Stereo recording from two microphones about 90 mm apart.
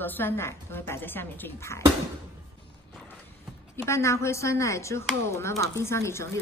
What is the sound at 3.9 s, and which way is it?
Speech, 30° left (ahead or behind).